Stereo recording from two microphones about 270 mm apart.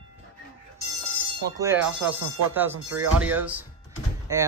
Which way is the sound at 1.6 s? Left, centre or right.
Centre.